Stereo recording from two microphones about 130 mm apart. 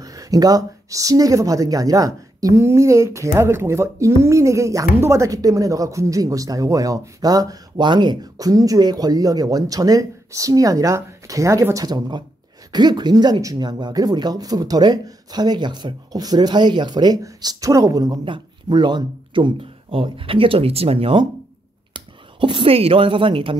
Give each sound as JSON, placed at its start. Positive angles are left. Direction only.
{"t": 0.0, "sound": "speech", "side_deg": -25}